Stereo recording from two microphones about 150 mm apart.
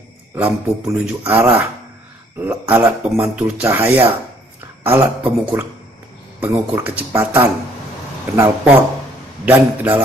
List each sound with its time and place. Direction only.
0.9 s speech: 10° right (ahead or behind)